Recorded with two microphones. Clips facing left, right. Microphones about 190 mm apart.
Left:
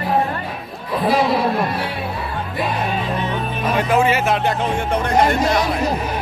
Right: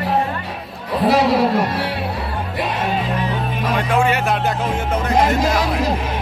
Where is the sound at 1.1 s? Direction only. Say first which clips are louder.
Right 2 dB; 80° right.